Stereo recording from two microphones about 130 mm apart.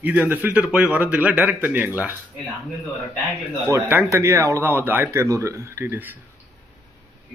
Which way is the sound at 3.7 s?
20° right (ahead or behind).